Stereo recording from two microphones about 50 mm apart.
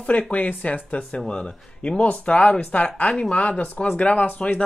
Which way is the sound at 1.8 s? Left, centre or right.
Left.